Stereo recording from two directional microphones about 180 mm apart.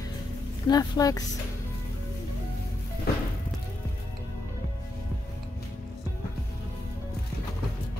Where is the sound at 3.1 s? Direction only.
60° left (ahead or behind).